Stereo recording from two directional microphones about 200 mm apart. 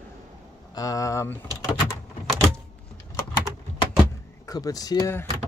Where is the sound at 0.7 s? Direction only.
15° left (ahead or behind).